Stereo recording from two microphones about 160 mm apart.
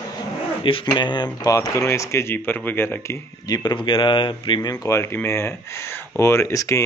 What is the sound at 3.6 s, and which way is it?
Speech, 30° left (ahead or behind).